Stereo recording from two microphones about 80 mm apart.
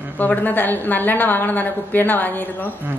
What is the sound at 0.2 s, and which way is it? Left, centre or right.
A woman's voice, left.